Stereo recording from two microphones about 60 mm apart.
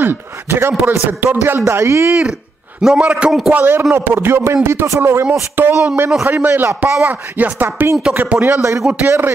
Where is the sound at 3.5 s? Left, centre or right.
Right.